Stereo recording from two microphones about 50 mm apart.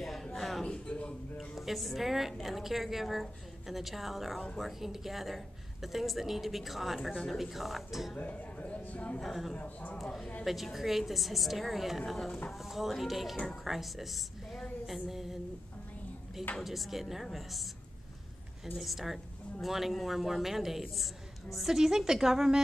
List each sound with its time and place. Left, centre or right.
0.0 s music: centre
0.7 s a sound: left
1.5 s a woman's voice: centre
8.2 s speech: left
9.2 s a woman's voice: centre
9.6 s a man's voice: left
10.4 s a woman's voice: centre
16.6 s a woman's voice: centre
18.8 s a woman's voice: centre